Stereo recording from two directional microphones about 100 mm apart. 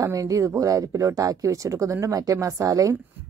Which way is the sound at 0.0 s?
35° right (ahead or behind).